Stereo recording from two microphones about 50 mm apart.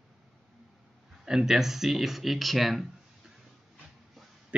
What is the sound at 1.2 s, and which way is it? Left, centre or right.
Speech, centre.